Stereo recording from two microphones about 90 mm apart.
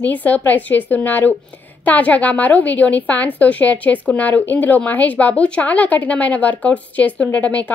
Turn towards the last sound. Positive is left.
turn(degrees=20)  # may be behind; listen again after turning